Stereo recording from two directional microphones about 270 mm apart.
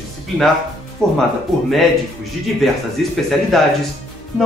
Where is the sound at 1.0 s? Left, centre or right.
Centre.